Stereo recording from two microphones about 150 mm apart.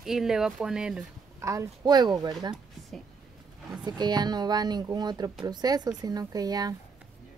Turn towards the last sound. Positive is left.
turn(degrees=-25)  # may be behind; listen again after turning